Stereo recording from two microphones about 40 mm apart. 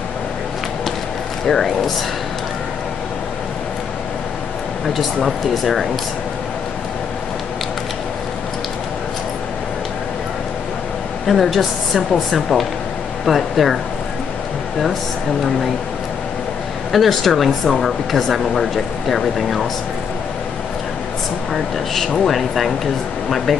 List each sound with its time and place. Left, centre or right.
4.8 s speech: centre
11.2 s speech: centre
16.9 s speech: centre
22.2 s speech: centre